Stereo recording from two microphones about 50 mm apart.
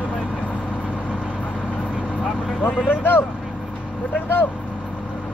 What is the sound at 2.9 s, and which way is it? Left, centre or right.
Speech, left.